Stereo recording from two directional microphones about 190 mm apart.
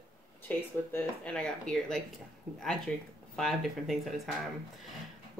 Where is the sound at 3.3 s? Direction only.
Centre (ahead or behind).